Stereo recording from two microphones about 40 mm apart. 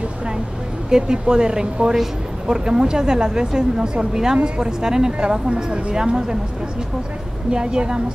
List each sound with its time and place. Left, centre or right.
0.8 s a woman's voice: right
7.5 s a woman's voice: right